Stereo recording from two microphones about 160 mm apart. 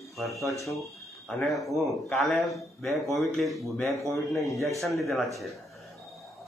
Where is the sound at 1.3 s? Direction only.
Centre (ahead or behind).